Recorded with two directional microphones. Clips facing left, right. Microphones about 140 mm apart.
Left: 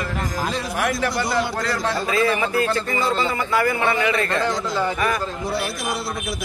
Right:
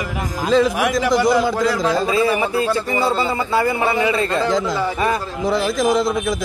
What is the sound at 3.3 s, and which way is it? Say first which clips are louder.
A man's voice: right 2 dB; 25° right (ahead or behind).